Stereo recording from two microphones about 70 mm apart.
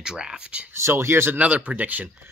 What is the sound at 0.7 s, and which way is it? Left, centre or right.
Speech, right.